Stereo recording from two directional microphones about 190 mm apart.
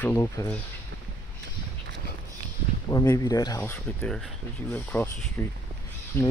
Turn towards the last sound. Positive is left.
turn(degrees=10)  # may be behind; listen again after turning